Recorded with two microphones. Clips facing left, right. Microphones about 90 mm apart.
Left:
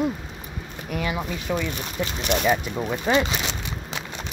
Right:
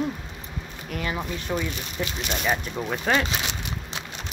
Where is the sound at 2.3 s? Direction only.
65° left (ahead or behind).